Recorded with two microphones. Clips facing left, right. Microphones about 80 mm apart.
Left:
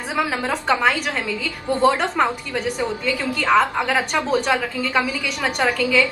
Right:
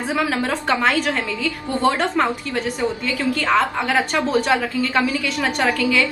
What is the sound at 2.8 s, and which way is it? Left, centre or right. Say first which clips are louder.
A woman's voice: right 1 dB; centre.